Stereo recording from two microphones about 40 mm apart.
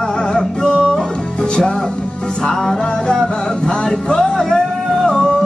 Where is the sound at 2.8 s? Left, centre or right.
Centre.